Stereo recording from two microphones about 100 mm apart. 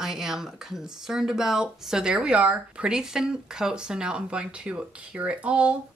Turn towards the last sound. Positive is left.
turn(degrees=-10)  # may be behind; listen again after turning